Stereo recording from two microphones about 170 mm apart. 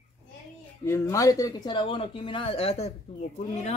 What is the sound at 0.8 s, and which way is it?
Speech, 15° left (ahead or behind).